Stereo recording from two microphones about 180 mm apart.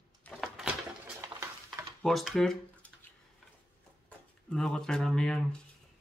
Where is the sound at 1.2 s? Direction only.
20° right (ahead or behind).